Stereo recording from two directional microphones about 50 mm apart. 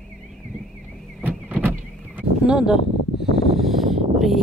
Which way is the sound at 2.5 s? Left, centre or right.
Centre.